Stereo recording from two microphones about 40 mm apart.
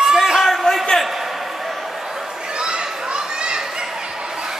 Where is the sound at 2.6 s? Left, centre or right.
Right.